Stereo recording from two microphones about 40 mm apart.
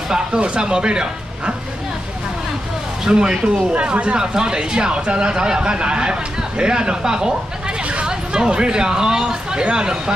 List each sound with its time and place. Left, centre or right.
0.1 s speech: right
3.1 s speech: centre
3.7 s speech: right
7.8 s a sound: right
8.1 s speech: centre